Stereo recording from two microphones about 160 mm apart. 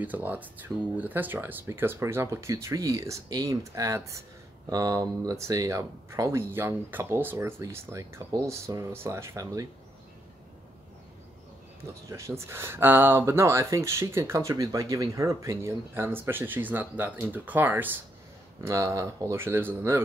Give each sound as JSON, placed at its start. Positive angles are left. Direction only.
{"t": 0.0, "sound": "speech", "side_deg": -10}
{"t": 12.1, "sound": "speech", "side_deg": -15}